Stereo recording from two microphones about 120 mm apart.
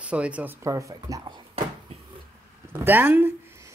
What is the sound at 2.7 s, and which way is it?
Speech, 15° right (ahead or behind).